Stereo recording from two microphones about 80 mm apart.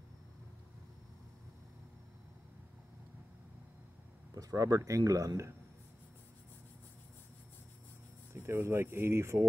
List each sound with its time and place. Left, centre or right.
4.4 s speech: right
8.4 s speech: right